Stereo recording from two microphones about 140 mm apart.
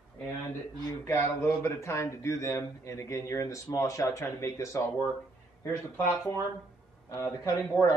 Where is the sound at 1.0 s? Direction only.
20° left (ahead or behind).